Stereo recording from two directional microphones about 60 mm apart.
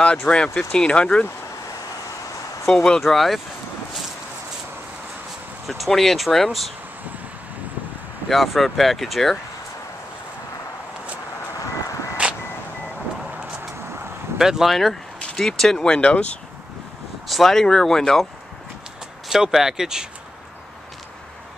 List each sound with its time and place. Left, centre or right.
0.3 s speech: centre
2.6 s speech: centre
5.7 s speech: centre
8.3 s speech: centre
11.5 s vehicle: left
14.4 s speech: centre
15.9 s speech: left
17.3 s speech: centre
19.2 s speech: centre